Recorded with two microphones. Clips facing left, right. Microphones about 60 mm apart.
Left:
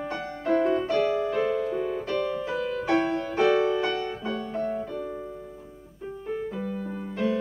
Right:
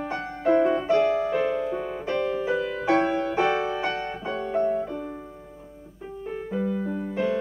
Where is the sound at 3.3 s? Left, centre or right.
Centre.